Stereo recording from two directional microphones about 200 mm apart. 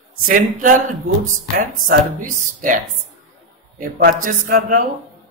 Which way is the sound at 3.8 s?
45° right (ahead or behind).